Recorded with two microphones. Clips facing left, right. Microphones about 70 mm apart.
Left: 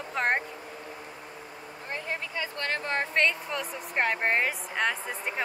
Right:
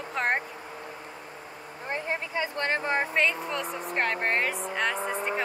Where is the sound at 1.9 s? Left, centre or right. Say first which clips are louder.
Right 3 dB; right.